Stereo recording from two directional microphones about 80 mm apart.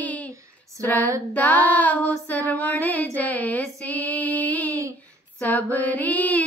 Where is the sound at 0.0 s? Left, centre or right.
Centre.